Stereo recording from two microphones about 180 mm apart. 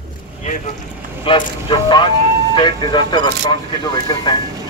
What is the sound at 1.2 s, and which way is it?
Speech, 25° left (ahead or behind).